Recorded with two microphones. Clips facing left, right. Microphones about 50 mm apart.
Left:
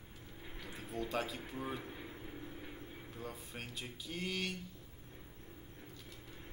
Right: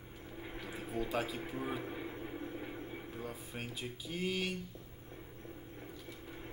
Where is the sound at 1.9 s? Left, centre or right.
Right.